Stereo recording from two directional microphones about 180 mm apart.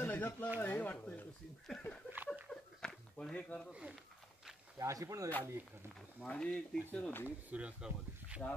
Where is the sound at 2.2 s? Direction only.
10° right (ahead or behind).